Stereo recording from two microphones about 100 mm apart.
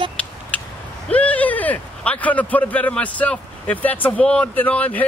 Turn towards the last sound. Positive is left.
turn(degrees=15)  # may be behind; listen again after turning